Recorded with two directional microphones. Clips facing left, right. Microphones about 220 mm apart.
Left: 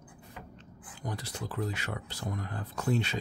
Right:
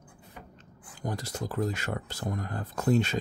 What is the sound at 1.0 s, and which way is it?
Speech, 45° right (ahead or behind).